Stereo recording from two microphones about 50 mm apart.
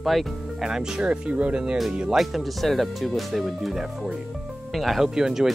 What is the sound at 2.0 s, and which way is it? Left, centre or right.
Speech, centre.